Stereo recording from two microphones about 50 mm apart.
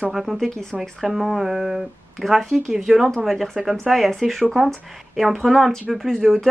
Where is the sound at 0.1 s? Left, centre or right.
Centre.